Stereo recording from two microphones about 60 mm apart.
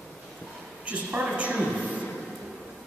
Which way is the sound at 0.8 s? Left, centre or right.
Right.